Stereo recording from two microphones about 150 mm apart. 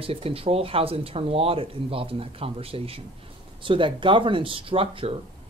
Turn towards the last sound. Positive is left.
turn(degrees=-35)  # may be behind; listen again after turning